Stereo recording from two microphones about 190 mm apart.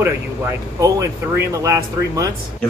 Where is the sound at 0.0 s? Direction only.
15° right (ahead or behind).